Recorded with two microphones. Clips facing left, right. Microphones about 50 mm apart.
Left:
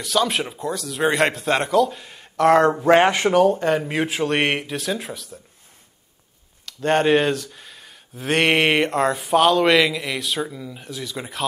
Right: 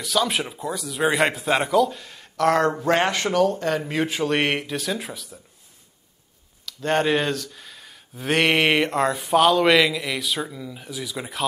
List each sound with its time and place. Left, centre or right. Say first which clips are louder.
0.0 s speech: left 2 dB; centre
2.0 s speech: left 2 dB; centre
6.8 s speech: left 4 dB; centre